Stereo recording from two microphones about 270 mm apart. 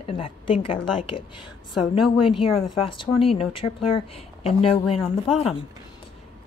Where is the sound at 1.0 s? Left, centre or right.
Left.